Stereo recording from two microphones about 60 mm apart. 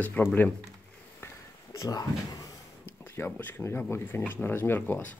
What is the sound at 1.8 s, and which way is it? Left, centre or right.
Speech, left.